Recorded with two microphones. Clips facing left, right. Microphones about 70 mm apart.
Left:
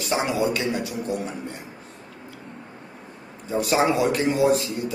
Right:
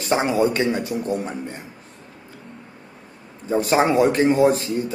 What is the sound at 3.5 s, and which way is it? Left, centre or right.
Speech, right.